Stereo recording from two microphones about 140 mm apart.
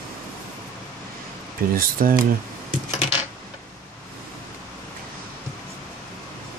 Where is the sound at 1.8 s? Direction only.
90° right.